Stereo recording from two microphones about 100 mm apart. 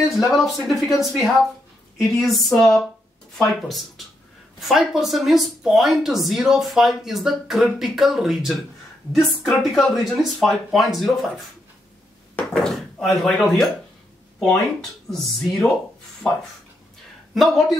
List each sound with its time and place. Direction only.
0.1 s speech: centre (ahead or behind)
12.5 s speech: 5° left (ahead or behind)
14.8 s speech: 5° left (ahead or behind)